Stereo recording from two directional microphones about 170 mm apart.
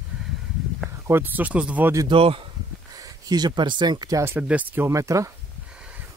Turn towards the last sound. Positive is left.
turn(degrees=-20)  # may be behind; listen again after turning